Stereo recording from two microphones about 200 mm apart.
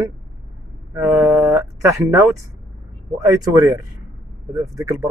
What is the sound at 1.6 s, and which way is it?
Speech, 15° right (ahead or behind).